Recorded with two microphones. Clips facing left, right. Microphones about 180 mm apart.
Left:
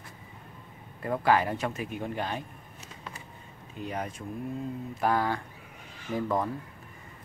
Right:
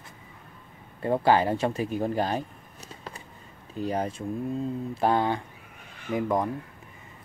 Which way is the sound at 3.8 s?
35° right (ahead or behind).